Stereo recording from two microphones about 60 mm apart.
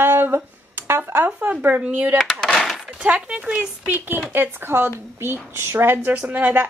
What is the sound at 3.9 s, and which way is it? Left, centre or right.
Speech, right.